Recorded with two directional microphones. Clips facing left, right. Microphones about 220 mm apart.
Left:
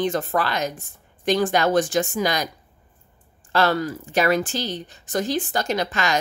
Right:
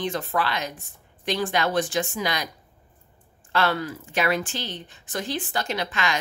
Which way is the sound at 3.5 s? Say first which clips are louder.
Left 4 dB; 40° left (ahead or behind).